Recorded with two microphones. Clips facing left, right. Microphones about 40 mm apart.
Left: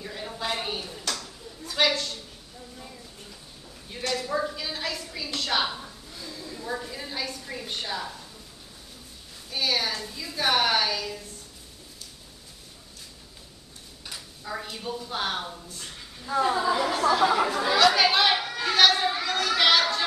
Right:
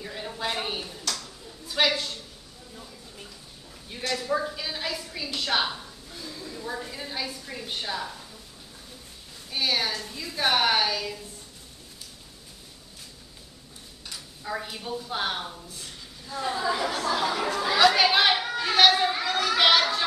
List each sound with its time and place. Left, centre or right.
0.0 s a sound: centre
0.6 s a woman's voice: centre
0.9 s a sound: left
1.7 s a woman's voice: centre
4.1 s a woman's voice: centre
6.2 s a sound: centre
6.8 s a woman's voice: centre
9.5 s a woman's voice: centre
14.4 s a woman's voice: centre
16.6 s speech: centre
17.2 s speech: centre
17.8 s children playing: centre